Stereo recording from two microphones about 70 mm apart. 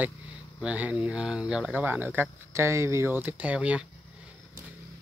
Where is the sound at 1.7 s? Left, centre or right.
Right.